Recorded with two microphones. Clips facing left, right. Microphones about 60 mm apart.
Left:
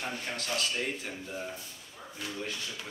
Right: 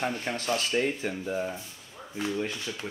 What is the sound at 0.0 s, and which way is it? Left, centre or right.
Speech, right.